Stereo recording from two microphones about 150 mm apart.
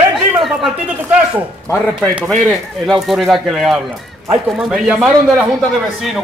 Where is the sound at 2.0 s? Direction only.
5° right (ahead or behind).